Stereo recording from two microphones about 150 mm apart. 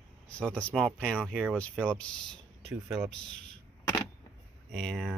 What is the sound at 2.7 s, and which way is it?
Speech, 15° right (ahead or behind).